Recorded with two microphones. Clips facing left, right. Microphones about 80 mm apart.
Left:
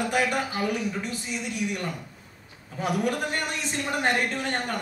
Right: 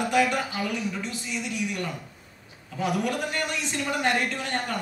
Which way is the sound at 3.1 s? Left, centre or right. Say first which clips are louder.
Even; left.